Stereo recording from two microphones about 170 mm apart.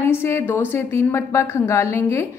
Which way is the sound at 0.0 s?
15° left (ahead or behind).